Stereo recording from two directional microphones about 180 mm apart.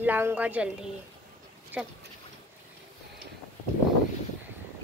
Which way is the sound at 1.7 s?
10° right (ahead or behind).